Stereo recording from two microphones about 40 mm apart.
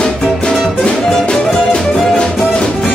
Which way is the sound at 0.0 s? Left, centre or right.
Centre.